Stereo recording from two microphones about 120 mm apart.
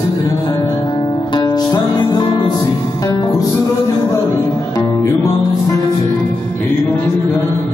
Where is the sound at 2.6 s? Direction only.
20° left (ahead or behind).